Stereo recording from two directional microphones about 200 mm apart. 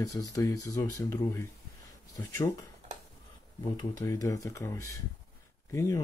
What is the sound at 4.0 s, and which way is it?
Speech, 15° left (ahead or behind).